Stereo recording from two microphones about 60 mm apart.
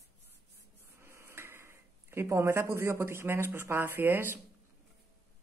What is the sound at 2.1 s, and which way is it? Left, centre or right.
Speech, right.